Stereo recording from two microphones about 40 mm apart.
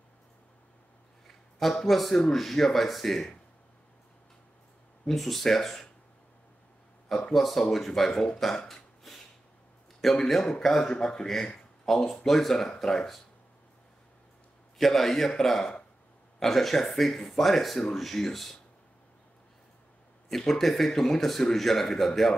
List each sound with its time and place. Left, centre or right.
1.2 s a man's voice: centre
5.0 s a man's voice: centre
7.3 s speech: centre
8.1 s speech: centre
8.6 s hiccup: centre
10.0 s a man's voice: centre
14.8 s a man's voice: centre
20.2 s a man's voice: centre